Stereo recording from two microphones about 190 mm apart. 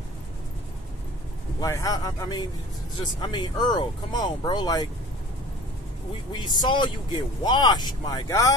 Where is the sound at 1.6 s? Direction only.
20° left (ahead or behind).